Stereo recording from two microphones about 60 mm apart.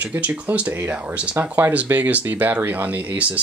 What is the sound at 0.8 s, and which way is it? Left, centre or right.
Speech, right.